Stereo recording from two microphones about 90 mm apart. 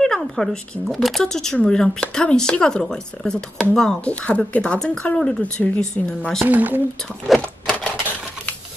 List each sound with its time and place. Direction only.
0.0 s speech: 5° left (ahead or behind)
6.4 s speech: 20° right (ahead or behind)
7.3 s typewriter: 10° left (ahead or behind)